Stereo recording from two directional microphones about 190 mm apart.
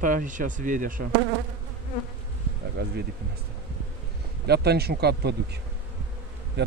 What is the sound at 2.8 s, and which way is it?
Speech, 55° right (ahead or behind).